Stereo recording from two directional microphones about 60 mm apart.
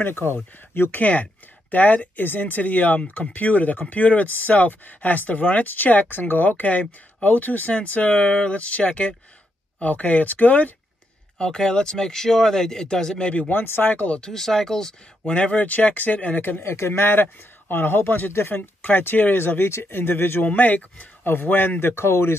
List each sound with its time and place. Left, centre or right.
0.0 s speech: left
1.0 s speech: left
11.3 s speech: centre
13.5 s speech: left
14.1 s speech: centre
15.3 s speech: centre; by 16.7 s left
16.7 s speech: left